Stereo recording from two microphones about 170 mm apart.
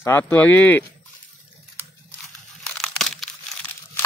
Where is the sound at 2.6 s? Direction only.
Centre (ahead or behind).